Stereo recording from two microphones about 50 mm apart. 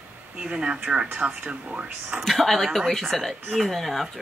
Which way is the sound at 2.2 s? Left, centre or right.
Centre.